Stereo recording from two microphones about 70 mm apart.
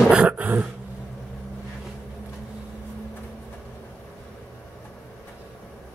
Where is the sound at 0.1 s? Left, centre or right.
Centre.